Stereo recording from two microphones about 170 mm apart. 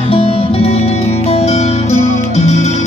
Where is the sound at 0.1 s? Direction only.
35° left (ahead or behind).